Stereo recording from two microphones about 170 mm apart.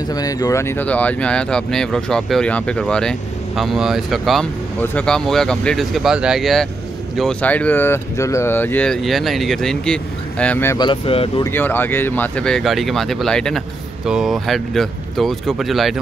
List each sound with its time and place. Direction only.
0.1 s speech: 20° left (ahead or behind)
10.8 s speech: 30° left (ahead or behind)
11.4 s speech: 10° left (ahead or behind)